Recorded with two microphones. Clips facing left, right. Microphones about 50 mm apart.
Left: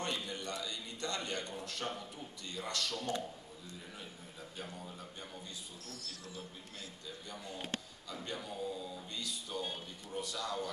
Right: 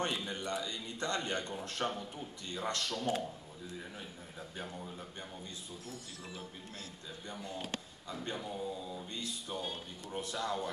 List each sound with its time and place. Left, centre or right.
0.2 s a sound: right
1.6 s a man's voice: right
2.9 s music: centre
5.9 s music: centre
8.5 s music: right
10.1 s a man's voice: right